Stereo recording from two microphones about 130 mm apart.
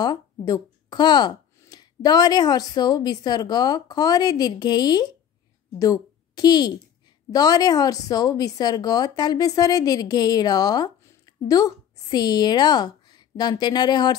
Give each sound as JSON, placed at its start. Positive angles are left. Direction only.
{"t": 0.0, "sound": "a woman's voice", "side_deg": 30}